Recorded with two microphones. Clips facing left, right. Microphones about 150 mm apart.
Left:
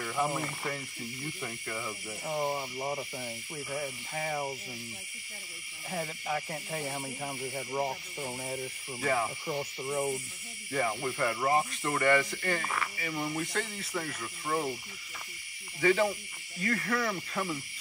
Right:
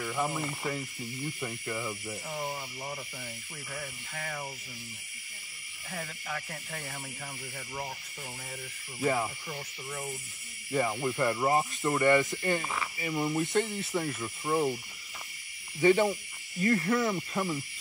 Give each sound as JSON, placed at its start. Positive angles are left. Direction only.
{"t": 0.0, "sound": "speech", "side_deg": 0}
{"t": 2.2, "sound": "speech", "side_deg": 25}
{"t": 5.9, "sound": "speech", "side_deg": 15}
{"t": 9.0, "sound": "speech", "side_deg": -10}
{"t": 9.5, "sound": "speech", "side_deg": 25}
{"t": 10.7, "sound": "speech", "side_deg": -10}
{"t": 14.4, "sound": "speech", "side_deg": -10}
{"t": 15.8, "sound": "speech", "side_deg": -25}